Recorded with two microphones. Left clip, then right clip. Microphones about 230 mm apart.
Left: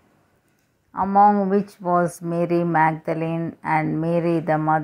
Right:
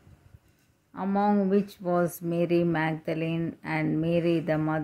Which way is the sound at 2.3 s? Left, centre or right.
Centre.